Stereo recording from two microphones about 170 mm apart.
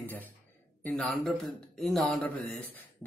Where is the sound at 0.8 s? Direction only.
5° left (ahead or behind).